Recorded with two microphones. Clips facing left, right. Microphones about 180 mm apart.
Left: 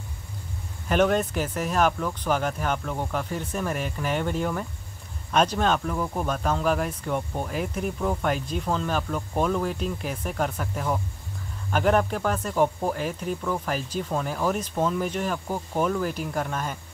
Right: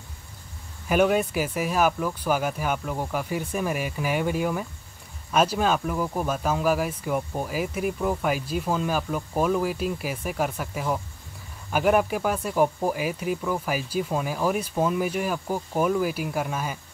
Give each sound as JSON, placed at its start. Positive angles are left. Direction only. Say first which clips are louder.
{"t": 0.8, "sound": "speech", "louder": "right 1 dB", "side_deg": -10}